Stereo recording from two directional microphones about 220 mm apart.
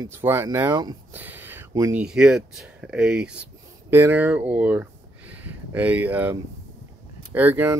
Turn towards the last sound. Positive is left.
turn(degrees=-10)  # may be behind; listen again after turning